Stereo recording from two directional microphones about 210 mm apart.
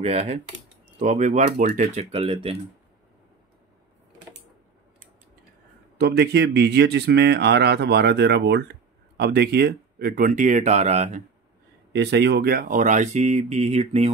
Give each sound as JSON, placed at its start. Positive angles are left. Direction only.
{"t": 0.0, "sound": "speech", "side_deg": -30}
{"t": 5.9, "sound": "speech", "side_deg": -50}
{"t": 11.9, "sound": "speech", "side_deg": -55}